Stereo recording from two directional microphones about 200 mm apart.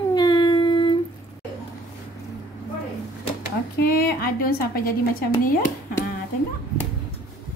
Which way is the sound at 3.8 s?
50° left (ahead or behind).